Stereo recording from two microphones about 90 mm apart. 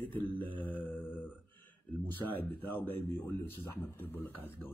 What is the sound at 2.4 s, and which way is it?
A man's voice, 20° left (ahead or behind).